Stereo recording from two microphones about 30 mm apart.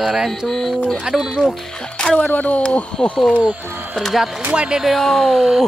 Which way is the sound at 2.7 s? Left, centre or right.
Left.